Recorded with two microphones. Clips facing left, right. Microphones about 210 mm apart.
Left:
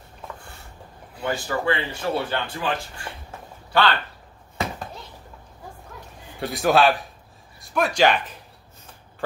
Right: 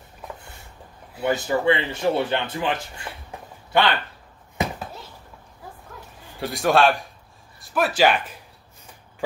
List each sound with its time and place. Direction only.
1.2 s speech: 20° right (ahead or behind)
3.3 s a sound: 15° right (ahead or behind)
6.4 s a man's voice: centre (ahead or behind)